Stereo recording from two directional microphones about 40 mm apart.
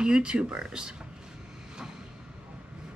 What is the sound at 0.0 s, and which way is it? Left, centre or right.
Speech, right.